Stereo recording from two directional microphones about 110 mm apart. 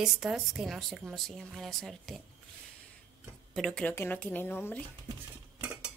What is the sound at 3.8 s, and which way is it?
Speech, 15° left (ahead or behind).